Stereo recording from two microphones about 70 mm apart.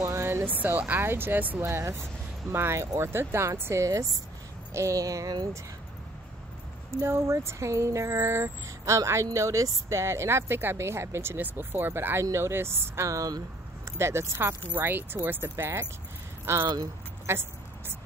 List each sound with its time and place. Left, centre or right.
0.0 s speech: right
1.6 s speech: right
4.7 s a sound: right
7.0 s speech: right
13.1 s a sound: right
13.8 s speech: right
14.8 s speech: right
16.6 s speech: right
17.3 s speech: right